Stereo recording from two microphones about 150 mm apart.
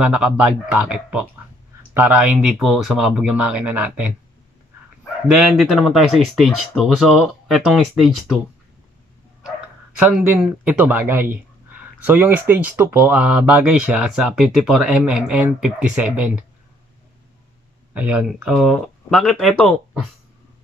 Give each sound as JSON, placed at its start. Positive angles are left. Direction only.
{"t": 0.0, "sound": "speech", "side_deg": -5}
{"t": 5.6, "sound": "speech", "side_deg": 0}
{"t": 9.9, "sound": "speech", "side_deg": -10}
{"t": 17.9, "sound": "speech", "side_deg": -10}